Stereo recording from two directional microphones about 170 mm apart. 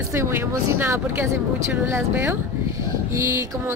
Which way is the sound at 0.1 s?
15° right (ahead or behind).